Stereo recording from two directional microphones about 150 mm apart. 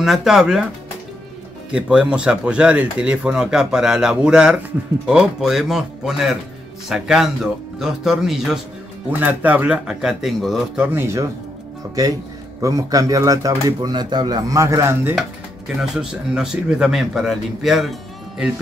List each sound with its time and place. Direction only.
0.0 s speech: centre (ahead or behind)
1.7 s speech: 5° right (ahead or behind)
10.9 s speech: 15° right (ahead or behind)
15.8 s speech: 5° right (ahead or behind)